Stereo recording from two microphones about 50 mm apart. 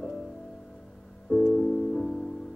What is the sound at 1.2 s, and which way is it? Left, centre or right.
Music, centre.